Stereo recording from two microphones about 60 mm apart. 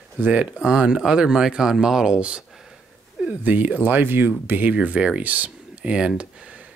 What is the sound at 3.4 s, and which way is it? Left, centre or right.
Speech, right.